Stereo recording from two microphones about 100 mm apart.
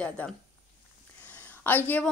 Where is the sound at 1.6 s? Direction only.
20° left (ahead or behind).